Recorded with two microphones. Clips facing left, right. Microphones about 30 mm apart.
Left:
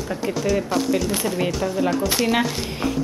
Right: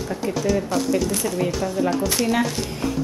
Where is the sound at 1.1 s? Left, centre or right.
Left.